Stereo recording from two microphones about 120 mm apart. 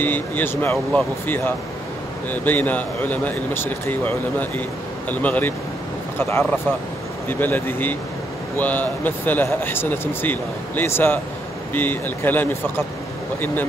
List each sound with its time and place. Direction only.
0.0 s a man's voice: 15° left (ahead or behind)
7.2 s a man's voice: 15° left (ahead or behind)